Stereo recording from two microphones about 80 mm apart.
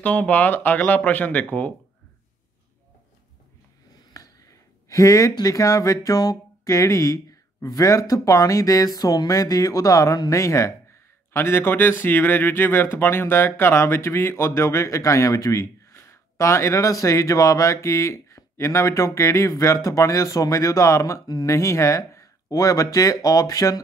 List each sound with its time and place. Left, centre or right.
0.0 s speech: centre
4.1 s a sound: left
5.5 s speech: left